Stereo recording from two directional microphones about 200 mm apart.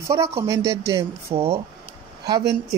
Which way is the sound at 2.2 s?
20° right (ahead or behind).